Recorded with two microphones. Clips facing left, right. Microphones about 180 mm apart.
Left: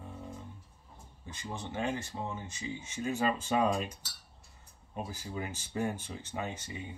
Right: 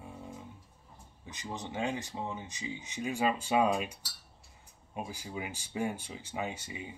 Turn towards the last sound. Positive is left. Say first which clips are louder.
# right 1 dB
turn(degrees=-10)  # may be behind; listen again after turning